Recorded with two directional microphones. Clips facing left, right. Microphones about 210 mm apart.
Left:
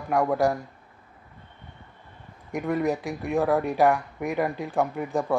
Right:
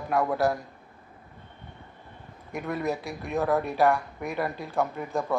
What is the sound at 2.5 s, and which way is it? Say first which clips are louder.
Speech: left 4 dB; 15° left (ahead or behind).